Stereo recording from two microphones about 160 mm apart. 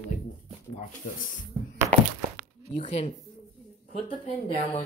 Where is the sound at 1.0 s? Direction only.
55° left (ahead or behind).